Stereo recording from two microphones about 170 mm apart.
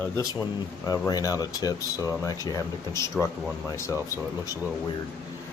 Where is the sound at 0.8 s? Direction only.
20° left (ahead or behind).